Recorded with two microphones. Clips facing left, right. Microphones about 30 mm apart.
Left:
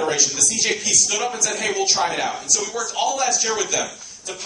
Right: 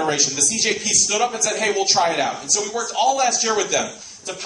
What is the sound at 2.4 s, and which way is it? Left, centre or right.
A man's voice, centre.